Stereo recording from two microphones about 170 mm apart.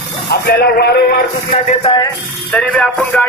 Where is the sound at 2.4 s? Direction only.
5° left (ahead or behind).